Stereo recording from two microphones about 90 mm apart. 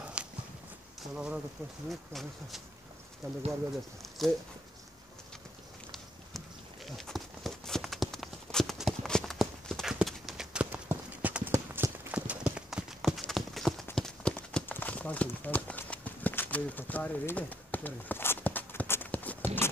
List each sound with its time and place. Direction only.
0.2 s walk: 10° right (ahead or behind)
1.1 s speech: 10° right (ahead or behind)
1.9 s speech: centre (ahead or behind)
3.2 s speech: 35° right (ahead or behind)
4.0 s speech: centre (ahead or behind)
7.0 s clip-clop: centre (ahead or behind)
10.7 s clip-clop: 20° right (ahead or behind)
11.5 s clip-clop: 30° right (ahead or behind)
12.1 s clip-clop: 15° right (ahead or behind)
12.6 s clip-clop: 5° right (ahead or behind)
14.7 s clip-clop: 20° left (ahead or behind)